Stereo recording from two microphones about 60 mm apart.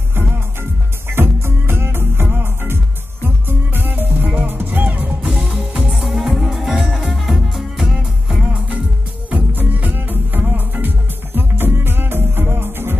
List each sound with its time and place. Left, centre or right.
0.1 s music: right
6.0 s music: centre
9.3 s music: right